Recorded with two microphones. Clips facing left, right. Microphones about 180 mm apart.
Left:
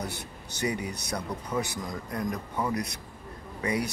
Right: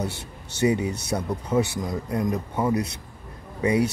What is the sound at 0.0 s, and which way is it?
Speech, 25° right (ahead or behind).